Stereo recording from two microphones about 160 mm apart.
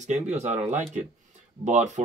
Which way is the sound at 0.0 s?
45° right (ahead or behind).